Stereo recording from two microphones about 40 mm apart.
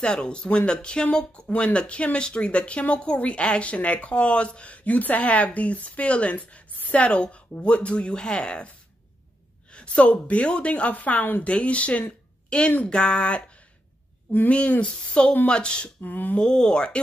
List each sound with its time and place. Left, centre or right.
0.0 s speech: left
14.3 s speech: left
15.0 s speech: left
16.0 s a sound: left
16.3 s speech: centre